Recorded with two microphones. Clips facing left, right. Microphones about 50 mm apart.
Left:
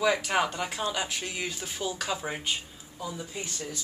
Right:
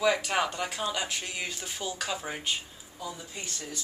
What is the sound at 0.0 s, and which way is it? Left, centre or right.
Speech, centre.